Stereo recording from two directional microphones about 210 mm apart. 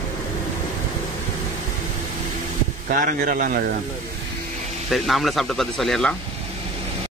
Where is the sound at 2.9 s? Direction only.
40° right (ahead or behind).